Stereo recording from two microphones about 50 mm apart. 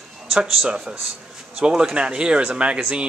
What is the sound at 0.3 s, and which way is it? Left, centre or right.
Speech, centre.